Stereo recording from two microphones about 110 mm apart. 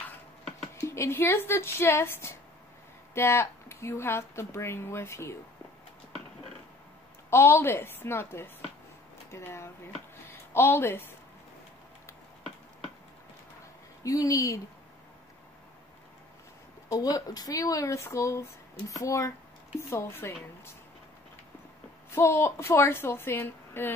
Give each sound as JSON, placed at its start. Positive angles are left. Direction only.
{"t": 0.7, "sound": "speech", "side_deg": 25}
{"t": 7.2, "sound": "speech", "side_deg": 25}
{"t": 10.2, "sound": "a sound", "side_deg": 20}
{"t": 14.0, "sound": "speech", "side_deg": 30}
{"t": 16.9, "sound": "speech", "side_deg": 35}
{"t": 22.1, "sound": "speech", "side_deg": 25}